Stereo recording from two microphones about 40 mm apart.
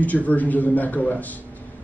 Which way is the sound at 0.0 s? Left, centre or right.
Left.